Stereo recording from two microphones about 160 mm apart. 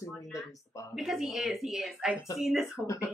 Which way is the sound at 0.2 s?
20° left (ahead or behind).